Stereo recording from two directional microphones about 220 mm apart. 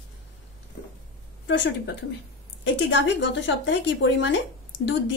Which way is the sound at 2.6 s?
55° left (ahead or behind).